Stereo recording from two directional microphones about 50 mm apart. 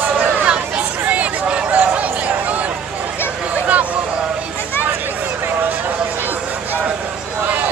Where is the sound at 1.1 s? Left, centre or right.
Right.